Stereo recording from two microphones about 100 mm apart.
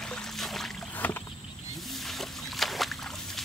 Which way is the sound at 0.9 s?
15° left (ahead or behind).